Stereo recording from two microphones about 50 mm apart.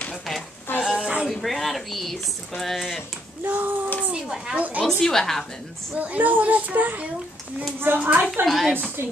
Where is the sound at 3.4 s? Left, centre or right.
Right.